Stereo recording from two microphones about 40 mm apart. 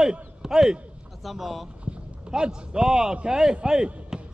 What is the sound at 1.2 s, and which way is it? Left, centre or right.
Speech, centre.